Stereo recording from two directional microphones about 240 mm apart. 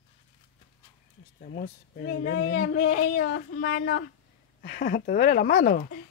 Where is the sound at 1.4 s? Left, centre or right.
Left.